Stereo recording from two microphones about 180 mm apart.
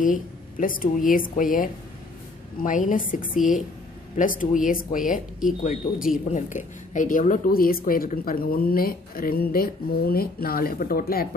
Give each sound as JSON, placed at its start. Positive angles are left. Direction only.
{"t": 0.0, "sound": "speech", "side_deg": 50}